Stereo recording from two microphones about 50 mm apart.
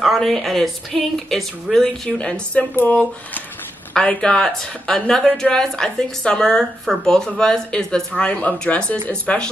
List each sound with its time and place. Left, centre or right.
0.0 s a woman's voice: centre
2.0 s speech: left
3.9 s speech: centre
8.2 s speech: left